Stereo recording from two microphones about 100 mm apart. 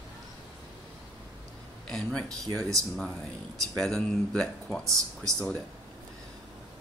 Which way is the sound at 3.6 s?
5° left (ahead or behind).